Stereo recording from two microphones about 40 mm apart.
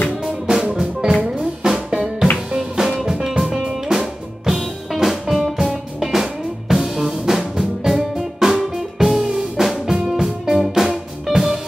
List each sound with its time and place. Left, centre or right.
0.5 s music: centre